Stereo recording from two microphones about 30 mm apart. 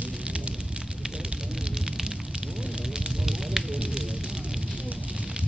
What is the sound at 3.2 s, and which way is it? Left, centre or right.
Fire, centre.